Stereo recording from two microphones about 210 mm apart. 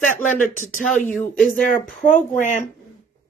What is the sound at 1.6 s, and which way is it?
Speech, 40° left (ahead or behind).